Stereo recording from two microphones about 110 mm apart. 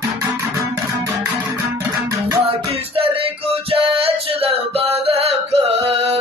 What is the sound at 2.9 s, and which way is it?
Music, 60° right (ahead or behind).